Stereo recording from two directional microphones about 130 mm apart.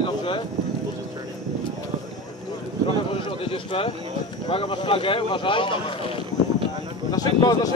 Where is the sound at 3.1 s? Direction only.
45° left (ahead or behind).